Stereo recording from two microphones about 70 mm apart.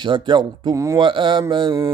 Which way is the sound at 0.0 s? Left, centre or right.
Right.